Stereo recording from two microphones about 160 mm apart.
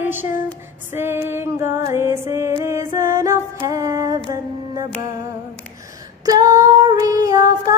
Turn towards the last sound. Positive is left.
turn(degrees=-20)  # may be behind; listen again after turning